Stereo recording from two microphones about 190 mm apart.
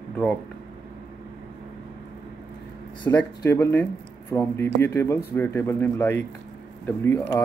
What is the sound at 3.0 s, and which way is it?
Speech, 10° left (ahead or behind).